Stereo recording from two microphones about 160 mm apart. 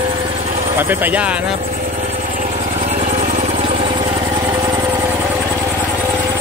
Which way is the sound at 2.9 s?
45° right (ahead or behind).